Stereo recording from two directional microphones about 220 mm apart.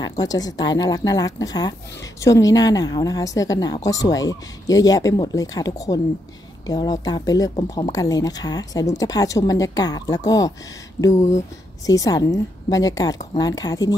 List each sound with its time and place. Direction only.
0.2 s speech: 15° left (ahead or behind)